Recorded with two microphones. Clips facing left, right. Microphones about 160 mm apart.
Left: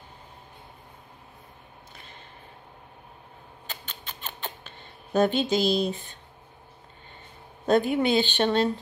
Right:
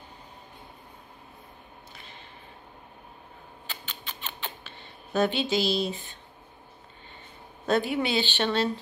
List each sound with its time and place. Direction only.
3.6 s rodents: 45° left (ahead or behind)
7.6 s speech: 45° left (ahead or behind)